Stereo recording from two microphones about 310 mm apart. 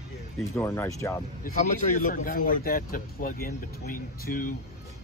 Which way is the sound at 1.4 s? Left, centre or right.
Left.